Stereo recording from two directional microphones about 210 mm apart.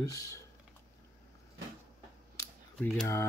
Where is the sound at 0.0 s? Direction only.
15° left (ahead or behind).